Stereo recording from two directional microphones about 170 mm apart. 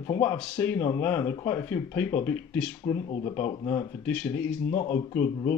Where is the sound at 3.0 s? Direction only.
35° left (ahead or behind).